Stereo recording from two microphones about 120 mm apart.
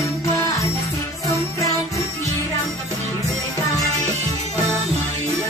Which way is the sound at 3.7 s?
30° left (ahead or behind).